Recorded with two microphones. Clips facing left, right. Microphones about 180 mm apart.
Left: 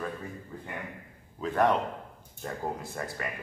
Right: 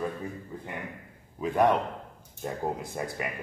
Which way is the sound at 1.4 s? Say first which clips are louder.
Right 2 dB; 10° right (ahead or behind).